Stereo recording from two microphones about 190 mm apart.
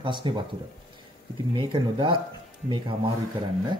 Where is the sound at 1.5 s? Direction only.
25° right (ahead or behind).